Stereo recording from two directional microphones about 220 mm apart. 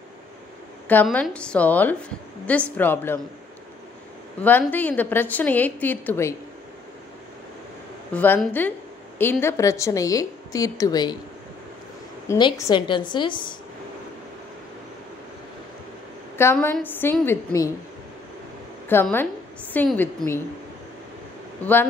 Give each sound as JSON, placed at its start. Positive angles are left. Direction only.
{"t": 0.8, "sound": "a woman's voice", "side_deg": 5}
{"t": 4.4, "sound": "a woman's voice", "side_deg": 10}
{"t": 8.1, "sound": "a woman's voice", "side_deg": 5}
{"t": 12.3, "sound": "a woman's voice", "side_deg": 15}
{"t": 16.3, "sound": "a woman's voice", "side_deg": 10}
{"t": 18.9, "sound": "a woman's voice", "side_deg": 10}